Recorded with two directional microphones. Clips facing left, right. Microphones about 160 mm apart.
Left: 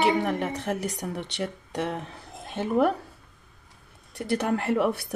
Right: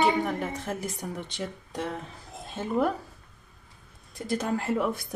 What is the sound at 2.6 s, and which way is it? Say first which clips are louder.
Speech: left 3 dB; 65° left (ahead or behind).